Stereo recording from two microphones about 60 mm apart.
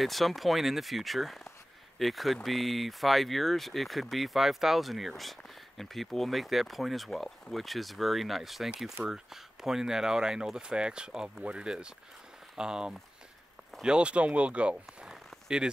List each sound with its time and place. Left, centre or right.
0.0 s speech: centre
8.6 s speech: centre